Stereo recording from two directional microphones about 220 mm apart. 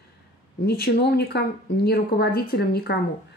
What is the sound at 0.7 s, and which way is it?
Speech, 45° left (ahead or behind).